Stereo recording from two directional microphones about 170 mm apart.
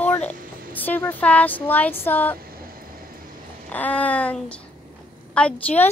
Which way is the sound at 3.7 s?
10° left (ahead or behind).